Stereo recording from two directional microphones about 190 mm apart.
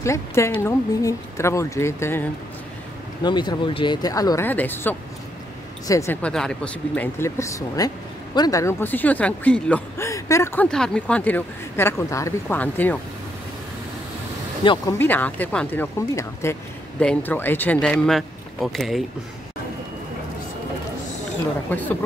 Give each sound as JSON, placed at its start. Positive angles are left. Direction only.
{"t": 0.0, "sound": "speech", "side_deg": 15}
{"t": 3.3, "sound": "speech", "side_deg": 25}
{"t": 6.3, "sound": "speech", "side_deg": 5}
{"t": 14.6, "sound": "speech", "side_deg": 25}
{"t": 15.0, "sound": "speech", "side_deg": 10}
{"t": 21.6, "sound": "speech", "side_deg": 10}